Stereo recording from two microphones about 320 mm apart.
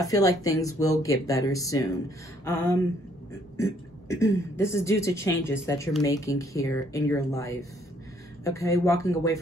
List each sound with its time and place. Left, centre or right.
0.0 s speech: centre
4.1 s speech: centre